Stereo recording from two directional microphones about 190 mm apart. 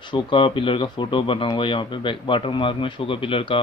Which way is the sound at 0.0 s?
25° left (ahead or behind).